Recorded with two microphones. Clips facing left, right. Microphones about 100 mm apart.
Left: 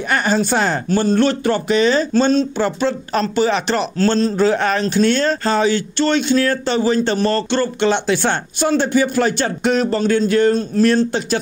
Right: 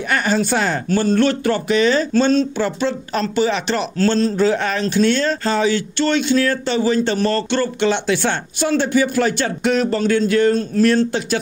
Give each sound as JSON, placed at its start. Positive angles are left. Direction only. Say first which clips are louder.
{"t": 0.1, "sound": "speech", "louder": "left 1 dB", "side_deg": 30}